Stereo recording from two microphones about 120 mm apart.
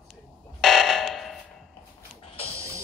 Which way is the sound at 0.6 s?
Centre (ahead or behind).